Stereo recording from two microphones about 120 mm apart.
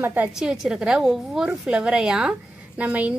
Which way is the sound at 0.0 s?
15° right (ahead or behind).